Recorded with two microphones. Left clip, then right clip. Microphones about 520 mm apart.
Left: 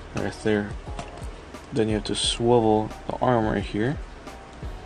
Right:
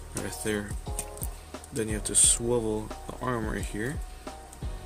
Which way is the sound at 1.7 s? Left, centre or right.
Right.